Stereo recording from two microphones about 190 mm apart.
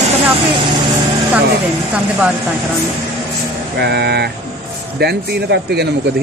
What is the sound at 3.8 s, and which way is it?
Speech, 60° right (ahead or behind).